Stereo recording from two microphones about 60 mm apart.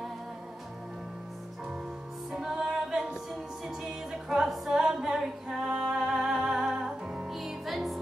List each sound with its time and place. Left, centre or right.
2.3 s music: centre
4.3 s a capella: centre
7.2 s music: centre